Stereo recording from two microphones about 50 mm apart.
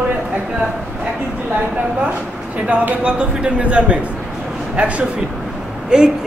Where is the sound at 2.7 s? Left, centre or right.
Right.